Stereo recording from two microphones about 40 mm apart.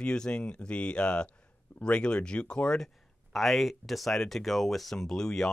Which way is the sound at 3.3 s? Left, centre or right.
Centre.